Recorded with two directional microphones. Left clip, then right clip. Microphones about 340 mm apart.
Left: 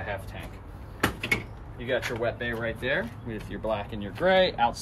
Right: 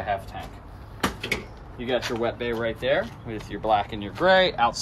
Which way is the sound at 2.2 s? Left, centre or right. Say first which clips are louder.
Right 3 dB; right.